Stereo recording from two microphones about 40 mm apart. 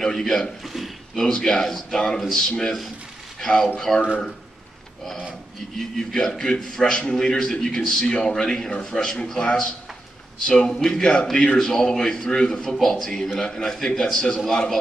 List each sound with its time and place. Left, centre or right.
0.0 s a man's voice: centre
0.7 s a sound: centre
1.1 s a man's voice: centre
5.8 s a man's voice: centre